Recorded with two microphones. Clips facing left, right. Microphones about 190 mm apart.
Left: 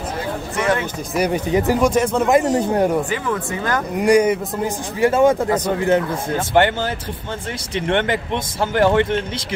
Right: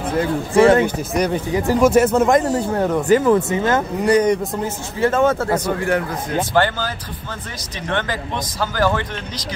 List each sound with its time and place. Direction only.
0.6 s speech: 30° right (ahead or behind)
1.1 s speech: 10° left (ahead or behind)
1.8 s speech: 5° right (ahead or behind)
2.3 s speech: 20° left (ahead or behind)
3.1 s speech: 40° right (ahead or behind)
3.3 s speech: 20° right (ahead or behind)
4.0 s speech: 10° left (ahead or behind)